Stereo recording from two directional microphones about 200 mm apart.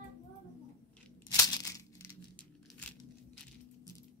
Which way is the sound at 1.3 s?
15° left (ahead or behind).